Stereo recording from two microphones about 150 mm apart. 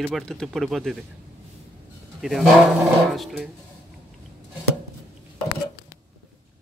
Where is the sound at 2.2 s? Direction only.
Centre (ahead or behind).